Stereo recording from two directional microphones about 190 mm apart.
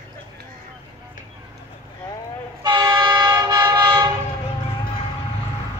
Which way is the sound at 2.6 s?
20° right (ahead or behind).